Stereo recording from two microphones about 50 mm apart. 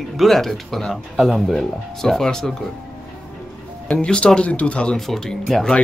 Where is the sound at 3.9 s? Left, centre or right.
Left.